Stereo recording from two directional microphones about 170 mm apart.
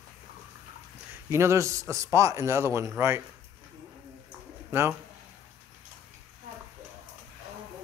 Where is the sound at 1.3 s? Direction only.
15° right (ahead or behind).